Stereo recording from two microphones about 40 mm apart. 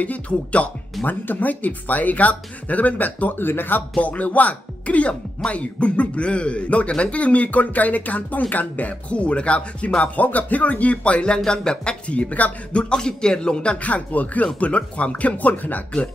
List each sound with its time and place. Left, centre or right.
0.0 s speech: left
1.0 s speech: left
3.4 s speech: left
4.0 s speech: left
10.2 s speech: left
12.9 s speech: centre; by 15.8 s left